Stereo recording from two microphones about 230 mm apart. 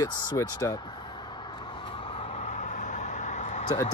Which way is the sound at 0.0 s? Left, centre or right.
Centre.